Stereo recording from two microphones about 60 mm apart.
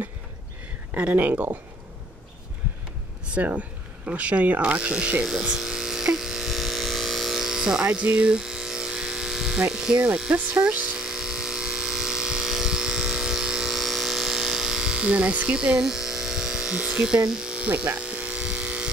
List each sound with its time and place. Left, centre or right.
0.9 s speech: right
3.3 s speech: right
5.3 s electric shaver: centre
9.6 s speech: centre
11.0 s electric toothbrush: centre
17.6 s electric shaver: right